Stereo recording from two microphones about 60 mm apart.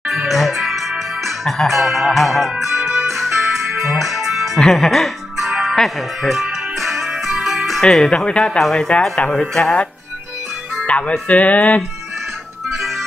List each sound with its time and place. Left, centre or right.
0.1 s music: centre
4.6 s speech: centre
5.5 s music: centre
5.8 s music: centre
7.9 s speech: centre
10.9 s speech: left